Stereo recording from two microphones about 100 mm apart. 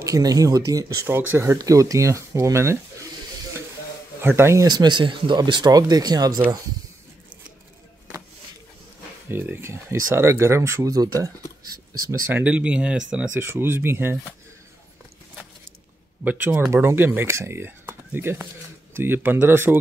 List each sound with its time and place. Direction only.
0.0 s speech: 35° right (ahead or behind)
1.0 s speech: 20° right (ahead or behind)
1.6 s speech: 35° right (ahead or behind)
4.2 s speech: 25° right (ahead or behind)
4.6 s speech: 45° right (ahead or behind)
9.3 s speech: 20° right (ahead or behind); by 11.3 s 40° right (ahead or behind)
12.1 s speech: 25° right (ahead or behind)
13.4 s speech: 20° right (ahead or behind)
16.3 s speech: 15° right (ahead or behind)